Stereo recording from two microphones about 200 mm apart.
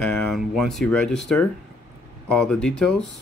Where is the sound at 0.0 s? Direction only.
5° left (ahead or behind).